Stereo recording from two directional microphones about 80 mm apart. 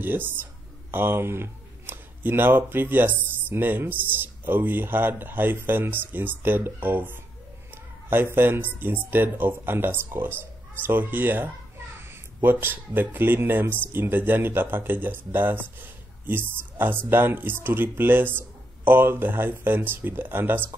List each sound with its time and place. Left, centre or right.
0.0 s speech: right